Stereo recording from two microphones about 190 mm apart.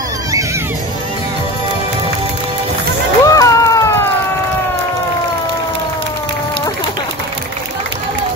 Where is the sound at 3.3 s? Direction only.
15° left (ahead or behind).